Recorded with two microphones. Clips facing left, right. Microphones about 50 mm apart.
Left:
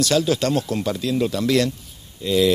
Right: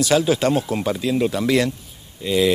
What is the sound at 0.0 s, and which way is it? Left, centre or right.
Speech, centre.